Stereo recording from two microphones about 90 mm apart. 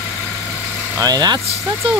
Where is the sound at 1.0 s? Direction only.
50° right (ahead or behind).